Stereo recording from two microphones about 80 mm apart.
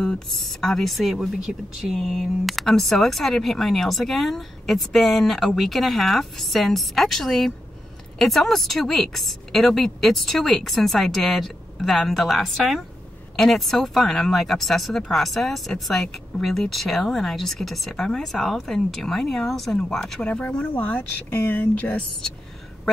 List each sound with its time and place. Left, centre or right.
0.0 s speech: centre